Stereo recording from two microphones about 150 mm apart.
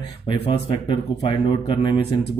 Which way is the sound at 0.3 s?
35° left (ahead or behind).